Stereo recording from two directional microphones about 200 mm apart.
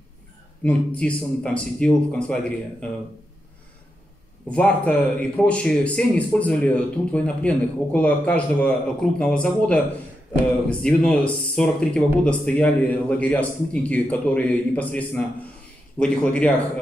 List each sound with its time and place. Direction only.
0.7 s a man's voice: 5° left (ahead or behind)
4.5 s a man's voice: 5° left (ahead or behind)